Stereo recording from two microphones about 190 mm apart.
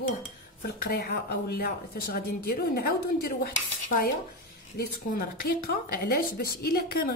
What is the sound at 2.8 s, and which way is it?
A woman's voice, 55° left (ahead or behind).